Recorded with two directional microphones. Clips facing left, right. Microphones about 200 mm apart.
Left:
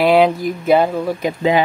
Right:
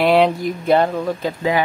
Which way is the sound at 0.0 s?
Centre (ahead or behind).